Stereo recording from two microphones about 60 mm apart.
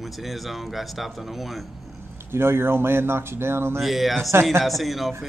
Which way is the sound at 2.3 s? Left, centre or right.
Right.